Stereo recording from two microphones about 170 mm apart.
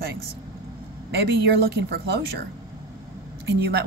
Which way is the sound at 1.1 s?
70° right (ahead or behind).